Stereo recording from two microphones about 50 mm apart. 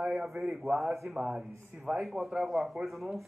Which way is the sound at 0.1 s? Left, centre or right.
Centre.